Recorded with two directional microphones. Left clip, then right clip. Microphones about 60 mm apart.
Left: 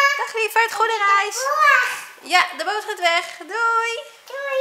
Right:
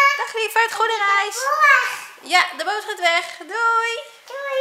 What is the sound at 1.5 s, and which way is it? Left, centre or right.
Speech, left.